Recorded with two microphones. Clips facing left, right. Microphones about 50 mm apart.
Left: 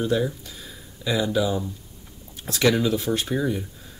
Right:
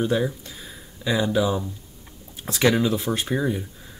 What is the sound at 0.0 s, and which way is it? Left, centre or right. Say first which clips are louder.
Speech: right 1 dB; centre.